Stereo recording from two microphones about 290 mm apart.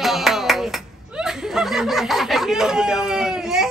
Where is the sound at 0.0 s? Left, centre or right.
Centre.